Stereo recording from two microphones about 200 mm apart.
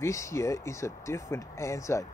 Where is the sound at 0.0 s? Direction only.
15° left (ahead or behind).